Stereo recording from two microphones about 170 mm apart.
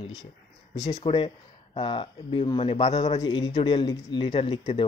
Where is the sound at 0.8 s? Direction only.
25° left (ahead or behind).